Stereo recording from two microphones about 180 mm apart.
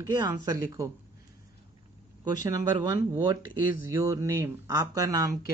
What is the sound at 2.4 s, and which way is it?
Speech, 20° right (ahead or behind).